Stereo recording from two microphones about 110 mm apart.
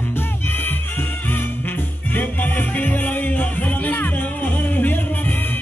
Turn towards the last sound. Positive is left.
turn(degrees=15)  # may be behind; listen again after turning